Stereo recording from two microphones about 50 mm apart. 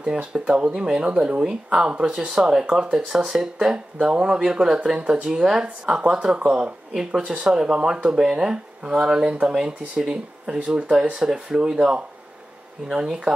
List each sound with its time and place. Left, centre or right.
0.0 s speech: centre
1.1 s speech: right
1.4 s speech: centre
3.7 s speech: right